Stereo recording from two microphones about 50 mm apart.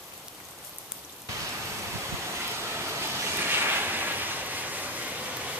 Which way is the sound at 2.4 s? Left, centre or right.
Right.